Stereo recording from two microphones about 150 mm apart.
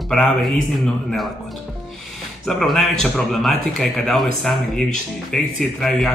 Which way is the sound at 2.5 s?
Centre (ahead or behind).